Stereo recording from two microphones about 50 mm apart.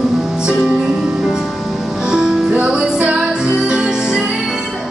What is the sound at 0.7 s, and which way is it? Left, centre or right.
Music, centre.